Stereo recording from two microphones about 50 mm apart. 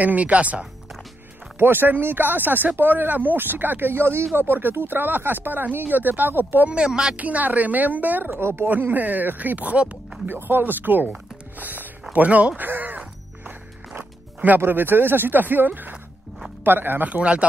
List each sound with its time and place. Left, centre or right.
0.0 s speech: right
1.6 s speech: right
4.4 s speech: right
6.9 s speech: centre
7.2 s speech: right
8.3 s speech: right
8.9 s speech: right
10.2 s speech: right
12.6 s crow: right
13.5 s music: right
14.6 s speech: right